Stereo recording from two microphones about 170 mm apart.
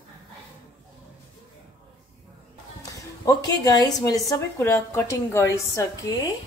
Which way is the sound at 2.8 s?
20° left (ahead or behind).